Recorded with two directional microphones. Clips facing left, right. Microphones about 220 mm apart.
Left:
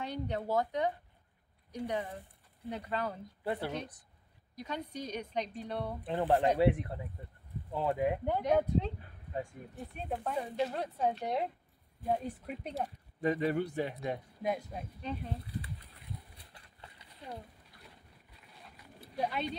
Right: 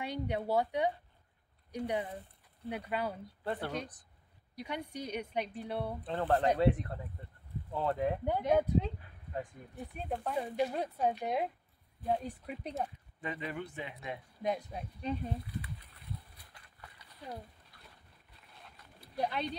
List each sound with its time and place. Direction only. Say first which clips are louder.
0.0 s a woman's voice: right 1 dB; 10° right (ahead or behind)
3.4 s speech: left 1 dB; 10° left (ahead or behind)
4.6 s a woman's voice: even; 10° right (ahead or behind)
6.0 s speech: left 2 dB; 15° left (ahead or behind)
8.3 s speech: right 2 dB; centre (ahead or behind)
10.3 s a woman's voice: right 2 dB; 10° right (ahead or behind)
13.2 s speech: left 9 dB; 40° left (ahead or behind)
14.4 s speech: right 2 dB; 5° left (ahead or behind)
18.6 s a sound: left 4 dB; centre (ahead or behind)